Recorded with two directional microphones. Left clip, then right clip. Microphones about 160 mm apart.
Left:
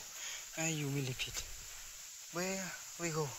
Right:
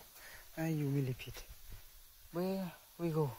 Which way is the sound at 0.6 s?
35° right (ahead or behind).